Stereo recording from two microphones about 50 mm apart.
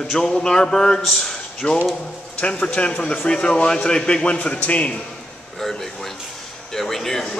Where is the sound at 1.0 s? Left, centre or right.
Centre.